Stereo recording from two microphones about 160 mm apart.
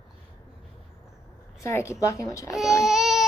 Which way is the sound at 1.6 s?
20° left (ahead or behind).